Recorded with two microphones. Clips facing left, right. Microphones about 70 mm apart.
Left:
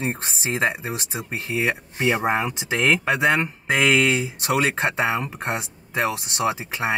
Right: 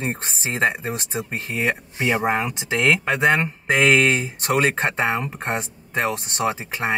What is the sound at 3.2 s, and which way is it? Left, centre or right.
Speech, right.